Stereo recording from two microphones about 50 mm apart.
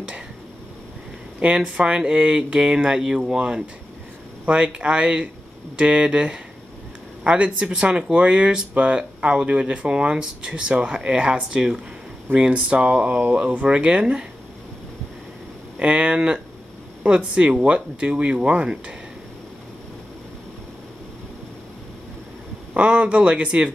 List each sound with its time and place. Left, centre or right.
1.4 s speech: right
15.8 s speech: right
22.8 s speech: right